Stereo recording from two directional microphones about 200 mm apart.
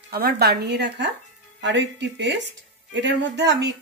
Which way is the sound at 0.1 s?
50° right (ahead or behind).